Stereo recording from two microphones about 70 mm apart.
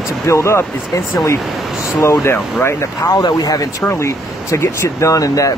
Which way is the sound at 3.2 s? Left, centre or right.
Left.